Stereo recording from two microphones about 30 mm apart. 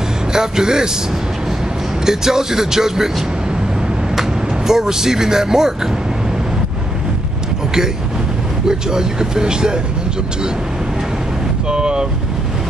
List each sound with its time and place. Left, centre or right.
0.3 s speech: right
2.0 s speech: centre
4.1 s speech: centre
8.6 s speech: right
11.7 s boat: right